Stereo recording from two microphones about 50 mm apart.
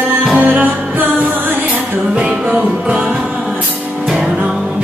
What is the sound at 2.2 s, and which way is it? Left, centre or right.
Music, centre.